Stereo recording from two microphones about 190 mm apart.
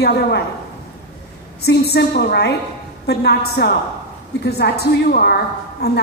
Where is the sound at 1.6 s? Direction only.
60° left (ahead or behind).